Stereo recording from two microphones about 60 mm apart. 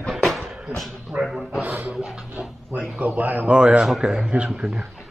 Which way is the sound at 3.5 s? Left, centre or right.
Centre.